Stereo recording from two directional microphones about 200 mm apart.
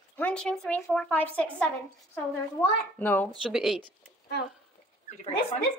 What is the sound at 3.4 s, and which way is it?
Speech, 5° right (ahead or behind).